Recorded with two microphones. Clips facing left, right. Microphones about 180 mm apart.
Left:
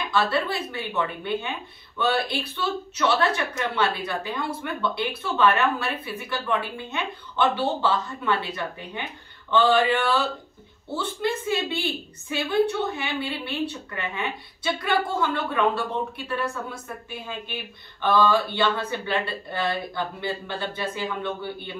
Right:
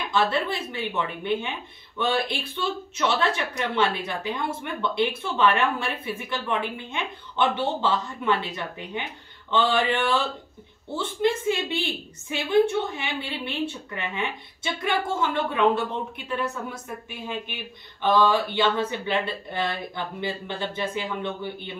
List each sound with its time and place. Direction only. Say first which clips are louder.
0.1 s a woman's voice: even; 20° right (ahead or behind)
18.0 s a woman's voice: even; 20° right (ahead or behind)